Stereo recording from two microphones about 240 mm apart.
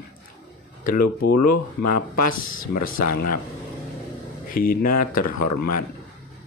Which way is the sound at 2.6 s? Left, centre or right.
Left.